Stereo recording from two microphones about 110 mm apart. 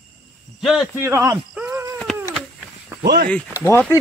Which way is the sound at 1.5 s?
20° right (ahead or behind).